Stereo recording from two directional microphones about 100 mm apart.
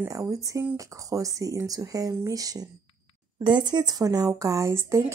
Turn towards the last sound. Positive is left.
turn(degrees=-30)  # may be behind; listen again after turning